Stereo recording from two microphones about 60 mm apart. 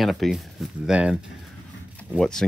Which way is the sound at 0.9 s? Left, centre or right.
Centre.